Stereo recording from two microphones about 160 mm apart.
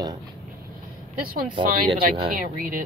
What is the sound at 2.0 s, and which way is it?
Speech, 70° right (ahead or behind).